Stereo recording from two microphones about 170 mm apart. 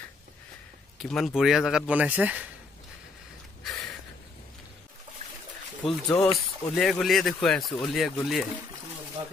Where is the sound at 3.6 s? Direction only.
5° left (ahead or behind).